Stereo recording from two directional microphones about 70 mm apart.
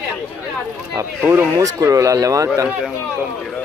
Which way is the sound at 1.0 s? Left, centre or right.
Right.